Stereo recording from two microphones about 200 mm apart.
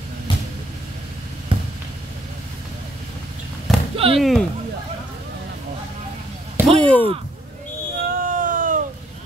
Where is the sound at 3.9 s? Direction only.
30° right (ahead or behind).